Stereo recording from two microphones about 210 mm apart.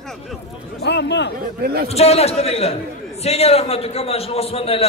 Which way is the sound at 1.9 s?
30° left (ahead or behind).